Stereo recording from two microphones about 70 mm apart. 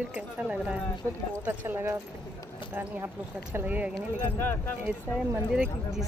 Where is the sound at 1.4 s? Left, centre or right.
Right.